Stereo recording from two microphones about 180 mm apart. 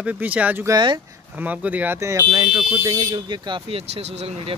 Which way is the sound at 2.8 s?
20° right (ahead or behind).